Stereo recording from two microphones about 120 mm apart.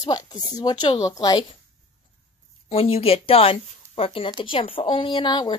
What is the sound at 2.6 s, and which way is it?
Speech, 55° left (ahead or behind).